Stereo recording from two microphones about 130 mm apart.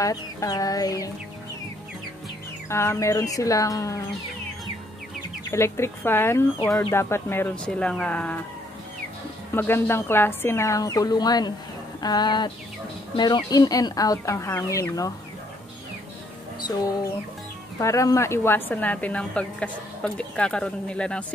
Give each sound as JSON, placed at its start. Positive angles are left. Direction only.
{"t": 0.0, "sound": "speech", "side_deg": 25}
{"t": 2.7, "sound": "speech", "side_deg": 20}
{"t": 5.5, "sound": "speech", "side_deg": 20}
{"t": 7.5, "sound": "a woman's voice", "side_deg": 5}
{"t": 9.6, "sound": "speech", "side_deg": 15}
{"t": 17.7, "sound": "a woman's voice", "side_deg": 25}